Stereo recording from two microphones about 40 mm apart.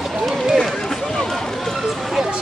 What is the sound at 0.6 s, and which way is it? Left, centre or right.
Run, centre.